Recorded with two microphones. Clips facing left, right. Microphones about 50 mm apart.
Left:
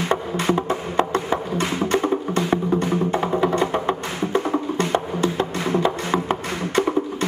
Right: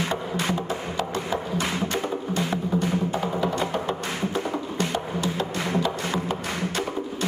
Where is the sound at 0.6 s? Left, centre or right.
Left.